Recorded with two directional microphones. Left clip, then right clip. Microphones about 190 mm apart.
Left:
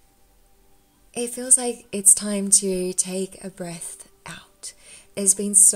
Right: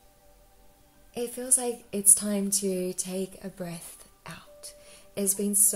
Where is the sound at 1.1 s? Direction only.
35° left (ahead or behind).